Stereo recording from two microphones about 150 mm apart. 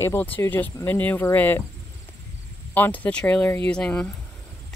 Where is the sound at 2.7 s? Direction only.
10° left (ahead or behind).